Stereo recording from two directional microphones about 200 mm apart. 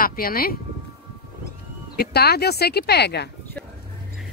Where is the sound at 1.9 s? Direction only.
50° left (ahead or behind).